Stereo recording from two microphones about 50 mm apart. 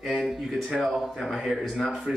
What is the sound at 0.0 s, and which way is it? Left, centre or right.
Speech, centre.